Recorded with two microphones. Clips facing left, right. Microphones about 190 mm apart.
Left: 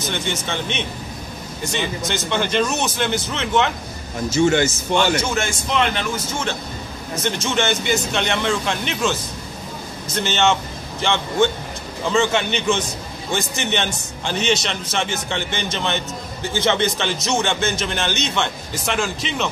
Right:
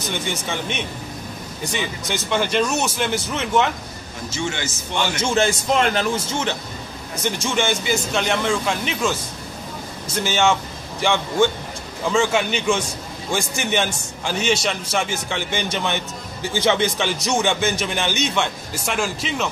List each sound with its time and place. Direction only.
0.1 s a man's voice: 10° right (ahead or behind)
4.4 s a man's voice: 45° left (ahead or behind)
5.3 s a man's voice: 35° right (ahead or behind)
7.2 s a man's voice: 10° right (ahead or behind)
10.2 s a man's voice: 10° right (ahead or behind)
12.1 s a man's voice: 5° right (ahead or behind)